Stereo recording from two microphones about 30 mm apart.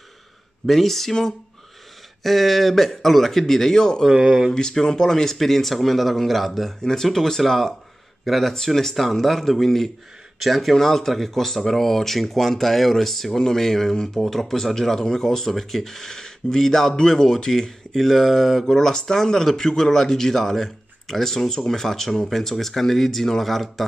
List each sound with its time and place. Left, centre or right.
0.7 s speech: centre
2.2 s speech: centre; by 4.0 s left
5.0 s speech: centre
6.8 s speech: centre
10.7 s speech: centre
17.9 s speech: centre
18.8 s speech: centre